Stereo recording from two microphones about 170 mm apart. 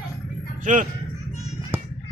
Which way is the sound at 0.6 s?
50° right (ahead or behind).